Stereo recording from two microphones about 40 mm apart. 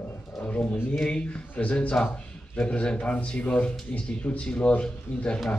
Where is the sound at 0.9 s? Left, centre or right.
Left.